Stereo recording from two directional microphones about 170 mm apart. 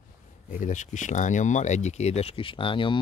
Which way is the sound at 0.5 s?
50° left (ahead or behind).